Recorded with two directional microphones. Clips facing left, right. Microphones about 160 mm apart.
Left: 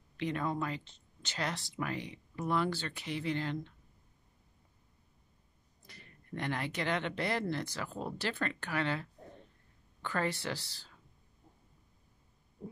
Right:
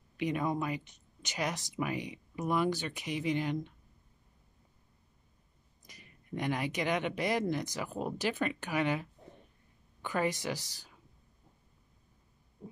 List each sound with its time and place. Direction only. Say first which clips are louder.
0.2 s speech: right 2 dB; 15° right (ahead or behind)
5.9 s speech: right 3 dB; 15° right (ahead or behind)